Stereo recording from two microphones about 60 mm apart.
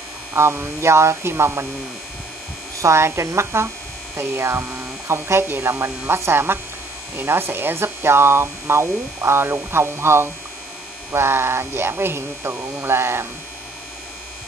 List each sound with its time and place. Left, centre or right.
0.3 s speech: right
2.8 s speech: right